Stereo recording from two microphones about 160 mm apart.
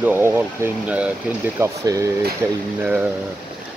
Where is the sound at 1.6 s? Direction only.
20° right (ahead or behind).